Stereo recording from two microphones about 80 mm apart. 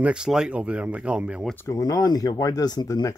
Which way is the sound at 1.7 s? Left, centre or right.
Left.